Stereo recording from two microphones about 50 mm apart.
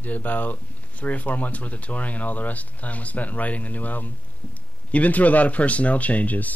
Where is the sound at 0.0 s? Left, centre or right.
Left.